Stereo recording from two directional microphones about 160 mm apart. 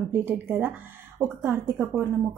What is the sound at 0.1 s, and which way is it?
A woman's voice, 15° right (ahead or behind).